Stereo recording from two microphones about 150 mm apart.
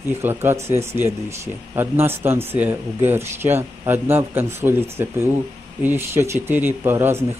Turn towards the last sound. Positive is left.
turn(degrees=-15)  # may be behind; listen again after turning